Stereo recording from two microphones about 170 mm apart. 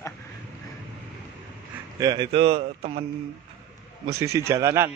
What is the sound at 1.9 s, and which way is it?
A man's voice, 20° right (ahead or behind).